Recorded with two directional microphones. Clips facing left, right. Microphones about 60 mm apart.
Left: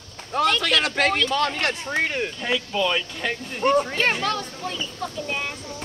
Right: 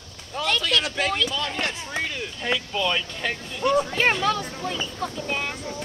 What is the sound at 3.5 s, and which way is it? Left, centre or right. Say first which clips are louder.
Speech: left 2 dB; left.